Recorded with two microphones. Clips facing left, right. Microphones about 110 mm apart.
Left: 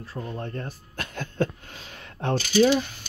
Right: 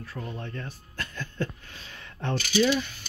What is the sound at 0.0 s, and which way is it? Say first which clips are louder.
Speech: left 2 dB; 30° left (ahead or behind).